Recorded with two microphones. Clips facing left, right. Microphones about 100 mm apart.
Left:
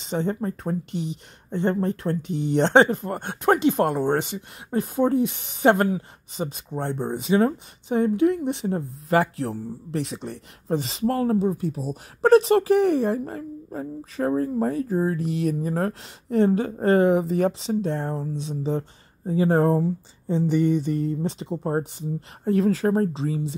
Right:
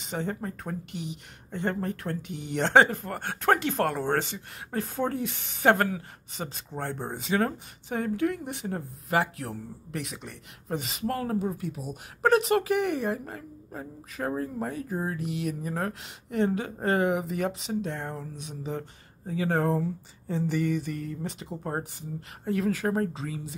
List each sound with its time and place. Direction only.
0.1 s speech: 30° left (ahead or behind)
19.8 s speech: 25° left (ahead or behind)
22.4 s speech: 35° left (ahead or behind)